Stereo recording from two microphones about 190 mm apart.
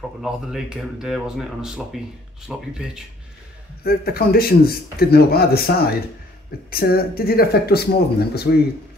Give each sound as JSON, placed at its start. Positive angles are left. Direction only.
{"t": 0.2, "sound": "speech", "side_deg": 0}
{"t": 3.8, "sound": "a man's voice", "side_deg": 50}